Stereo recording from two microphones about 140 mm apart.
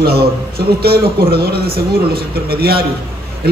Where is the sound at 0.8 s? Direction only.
90° right.